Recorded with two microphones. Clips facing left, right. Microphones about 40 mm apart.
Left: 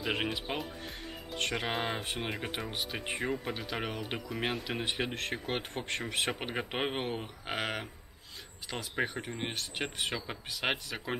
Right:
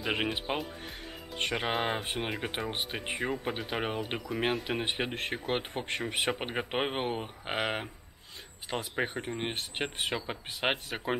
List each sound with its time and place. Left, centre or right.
0.5 s speech: centre
2.4 s speech: centre
4.3 s speech: centre
4.6 s speech: centre
9.5 s speech: right
9.8 s speech: centre